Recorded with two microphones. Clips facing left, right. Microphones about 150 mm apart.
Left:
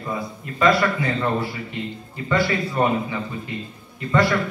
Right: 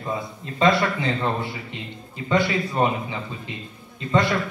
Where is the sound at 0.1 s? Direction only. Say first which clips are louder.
Left 1 dB; 25° right (ahead or behind).